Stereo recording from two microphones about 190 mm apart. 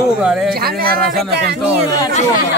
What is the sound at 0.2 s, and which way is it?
Speech, 5° right (ahead or behind).